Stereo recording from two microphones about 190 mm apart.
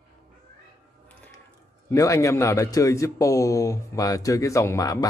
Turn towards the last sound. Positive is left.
turn(degrees=15)  # may be behind; listen again after turning